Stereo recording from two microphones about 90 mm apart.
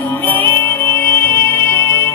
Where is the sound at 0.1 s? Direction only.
20° left (ahead or behind).